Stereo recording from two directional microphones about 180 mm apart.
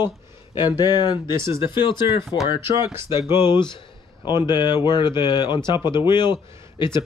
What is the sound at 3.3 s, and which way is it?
Speech, 25° left (ahead or behind).